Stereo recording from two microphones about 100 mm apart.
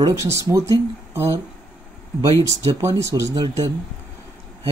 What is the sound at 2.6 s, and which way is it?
Speech, 30° right (ahead or behind).